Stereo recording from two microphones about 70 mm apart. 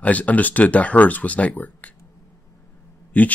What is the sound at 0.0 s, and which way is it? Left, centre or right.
Speech, left.